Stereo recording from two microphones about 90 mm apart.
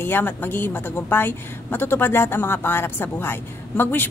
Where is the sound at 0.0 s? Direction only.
20° left (ahead or behind).